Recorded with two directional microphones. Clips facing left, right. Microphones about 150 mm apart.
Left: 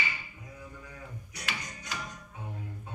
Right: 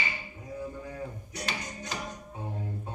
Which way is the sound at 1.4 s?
35° right (ahead or behind).